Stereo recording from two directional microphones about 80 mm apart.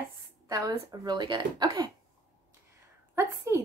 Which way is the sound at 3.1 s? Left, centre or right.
Right.